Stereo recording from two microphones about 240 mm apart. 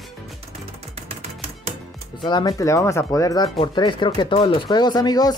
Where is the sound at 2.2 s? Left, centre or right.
Centre.